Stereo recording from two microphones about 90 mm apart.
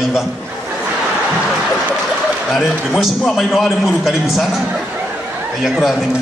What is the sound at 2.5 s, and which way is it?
A man's voice, centre (ahead or behind).